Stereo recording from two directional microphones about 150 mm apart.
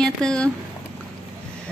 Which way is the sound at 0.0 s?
5° left (ahead or behind).